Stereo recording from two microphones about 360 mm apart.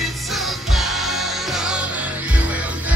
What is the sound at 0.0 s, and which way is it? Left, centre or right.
Music, centre.